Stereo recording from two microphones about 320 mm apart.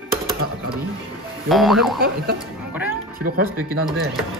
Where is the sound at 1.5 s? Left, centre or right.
Centre.